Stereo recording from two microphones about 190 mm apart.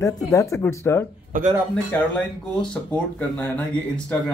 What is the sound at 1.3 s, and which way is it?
Speech, 45° right (ahead or behind).